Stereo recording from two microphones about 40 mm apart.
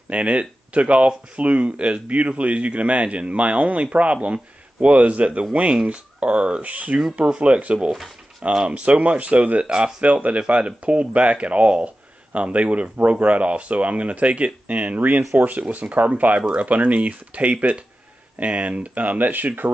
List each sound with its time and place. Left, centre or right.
0.1 s speech: right